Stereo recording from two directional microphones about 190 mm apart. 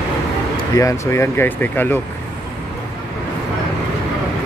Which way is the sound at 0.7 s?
15° left (ahead or behind).